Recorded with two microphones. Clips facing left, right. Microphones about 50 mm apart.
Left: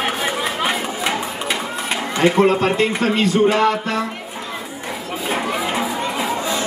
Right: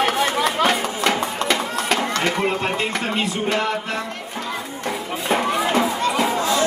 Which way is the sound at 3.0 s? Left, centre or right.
Right.